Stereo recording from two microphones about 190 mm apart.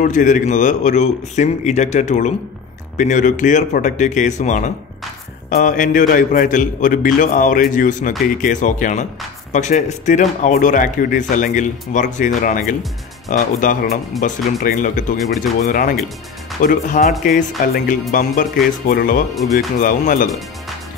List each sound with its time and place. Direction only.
0.0 s a man's voice: 45° left (ahead or behind)